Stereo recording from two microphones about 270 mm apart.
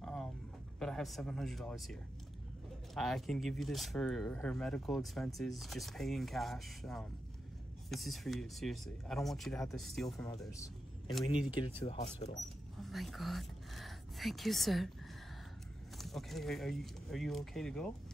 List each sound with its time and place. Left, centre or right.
0.0 s a sound: centre
0.7 s speech: centre
10.1 s speech: centre
11.6 s speech: left
12.8 s speech: centre
16.0 s speech: centre